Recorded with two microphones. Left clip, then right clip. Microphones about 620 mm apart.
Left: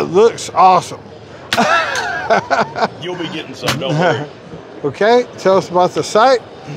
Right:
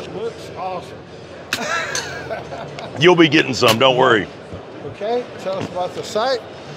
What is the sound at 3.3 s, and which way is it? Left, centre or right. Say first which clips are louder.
Speech: right 6 dB; right.